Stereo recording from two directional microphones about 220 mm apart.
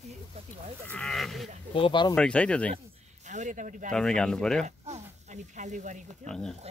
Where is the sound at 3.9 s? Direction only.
5° left (ahead or behind).